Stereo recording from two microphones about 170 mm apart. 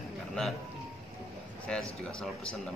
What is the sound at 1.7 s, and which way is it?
Speech, 5° left (ahead or behind).